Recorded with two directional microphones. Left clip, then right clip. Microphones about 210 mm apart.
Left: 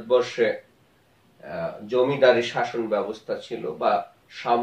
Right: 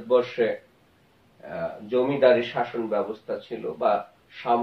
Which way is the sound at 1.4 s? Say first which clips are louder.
Left 1 dB; 20° left (ahead or behind).